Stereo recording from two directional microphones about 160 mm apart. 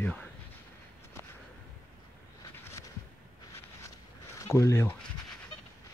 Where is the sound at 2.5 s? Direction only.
15° left (ahead or behind).